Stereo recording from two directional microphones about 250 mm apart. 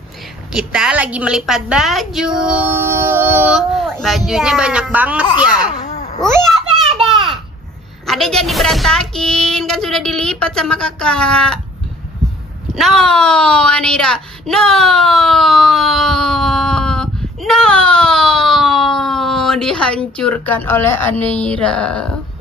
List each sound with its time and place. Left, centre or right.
0.5 s a woman's voice: centre
5.6 s a sound: left
8.1 s a woman's voice: centre
12.7 s a woman's voice: centre